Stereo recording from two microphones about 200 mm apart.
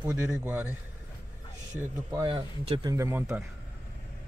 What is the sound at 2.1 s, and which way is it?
Speech, 25° right (ahead or behind).